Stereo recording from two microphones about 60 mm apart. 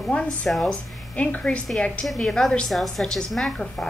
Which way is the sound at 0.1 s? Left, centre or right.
Centre.